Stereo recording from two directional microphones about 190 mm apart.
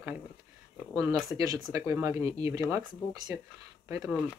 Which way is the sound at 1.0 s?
15° right (ahead or behind).